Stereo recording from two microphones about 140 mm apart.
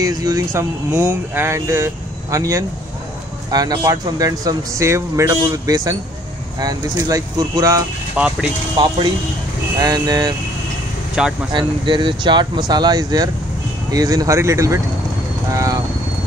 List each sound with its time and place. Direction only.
0.0 s speech: 25° right (ahead or behind)
0.9 s speech: 15° right (ahead or behind)
8.2 s speech: 5° right (ahead or behind)
8.7 s speech: 35° right (ahead or behind)
11.2 s speech: 5° right (ahead or behind)
11.5 s speech: 35° right (ahead or behind)
15.5 s vehicle: 25° right (ahead or behind)